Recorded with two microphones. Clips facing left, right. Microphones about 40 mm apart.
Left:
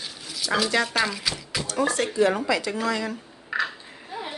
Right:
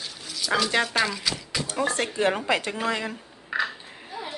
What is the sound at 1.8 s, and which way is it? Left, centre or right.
Speech, right.